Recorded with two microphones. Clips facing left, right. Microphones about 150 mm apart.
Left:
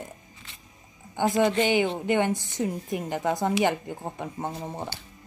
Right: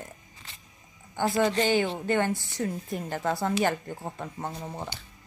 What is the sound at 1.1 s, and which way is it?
A woman's voice, 15° left (ahead or behind).